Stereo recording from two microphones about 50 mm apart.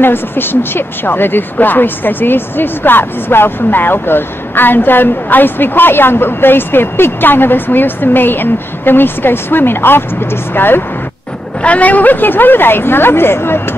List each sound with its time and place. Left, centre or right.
0.0 s speech: left
11.6 s speech: left